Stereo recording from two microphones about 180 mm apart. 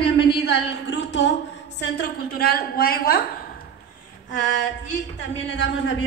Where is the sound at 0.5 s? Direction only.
80° left.